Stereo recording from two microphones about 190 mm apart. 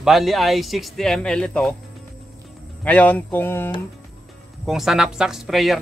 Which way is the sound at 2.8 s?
5° left (ahead or behind).